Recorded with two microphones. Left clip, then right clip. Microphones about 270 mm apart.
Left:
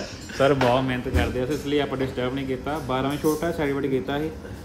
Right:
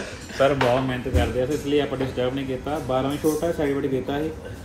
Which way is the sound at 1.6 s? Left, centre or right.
Centre.